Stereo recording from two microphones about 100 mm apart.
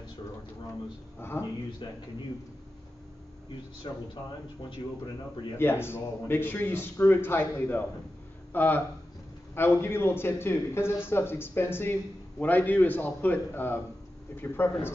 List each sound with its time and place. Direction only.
1.3 s speech: 40° left (ahead or behind)
3.9 s a man's voice: 50° left (ahead or behind)
5.6 s a man's voice: 25° left (ahead or behind)